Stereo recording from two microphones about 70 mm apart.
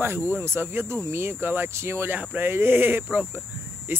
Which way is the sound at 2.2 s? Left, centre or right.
Right.